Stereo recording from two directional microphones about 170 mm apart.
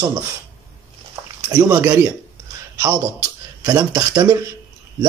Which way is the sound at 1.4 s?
10° right (ahead or behind).